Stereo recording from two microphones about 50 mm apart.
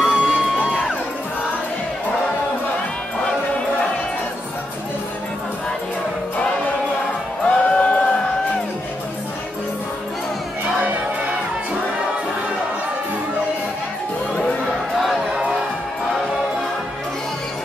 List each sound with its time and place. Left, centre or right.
0.0 s music: centre
7.4 s music: centre
14.3 s a sound: centre